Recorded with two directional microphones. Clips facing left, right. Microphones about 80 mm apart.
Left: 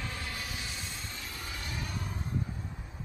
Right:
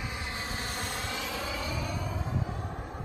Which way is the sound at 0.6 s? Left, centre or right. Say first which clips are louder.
Right 7 dB; right.